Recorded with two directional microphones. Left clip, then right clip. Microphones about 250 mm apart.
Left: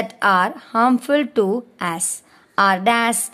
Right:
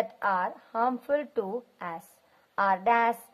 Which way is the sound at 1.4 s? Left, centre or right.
Left.